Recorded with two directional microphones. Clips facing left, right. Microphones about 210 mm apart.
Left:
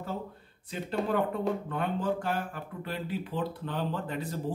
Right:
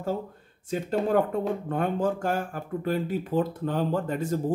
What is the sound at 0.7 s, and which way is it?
Speech, 45° right (ahead or behind).